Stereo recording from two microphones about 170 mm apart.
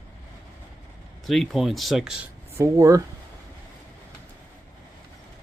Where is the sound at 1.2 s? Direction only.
Centre (ahead or behind).